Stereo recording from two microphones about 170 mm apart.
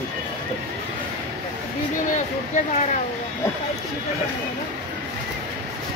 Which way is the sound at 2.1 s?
45° left (ahead or behind).